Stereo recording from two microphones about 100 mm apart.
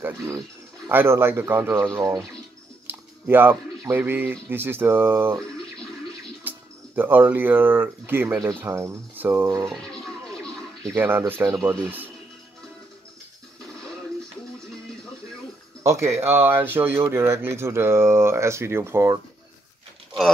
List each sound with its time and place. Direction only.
0.8 s speech: 25° right (ahead or behind)
7.0 s speech: 20° right (ahead or behind)
9.7 s a sound: centre (ahead or behind)
11.0 s speech: 20° right (ahead or behind)
15.8 s speech: 30° right (ahead or behind)